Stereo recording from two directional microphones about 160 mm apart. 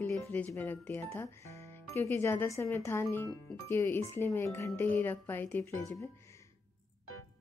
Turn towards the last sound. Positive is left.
turn(degrees=15)  # may be behind; listen again after turning